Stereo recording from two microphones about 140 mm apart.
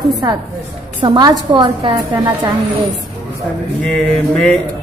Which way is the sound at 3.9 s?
5° left (ahead or behind).